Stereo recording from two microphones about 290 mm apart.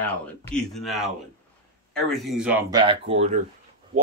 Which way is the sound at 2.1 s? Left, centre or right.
Centre.